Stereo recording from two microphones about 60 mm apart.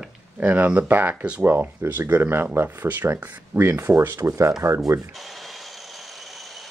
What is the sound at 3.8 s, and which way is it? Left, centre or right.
Speech, right.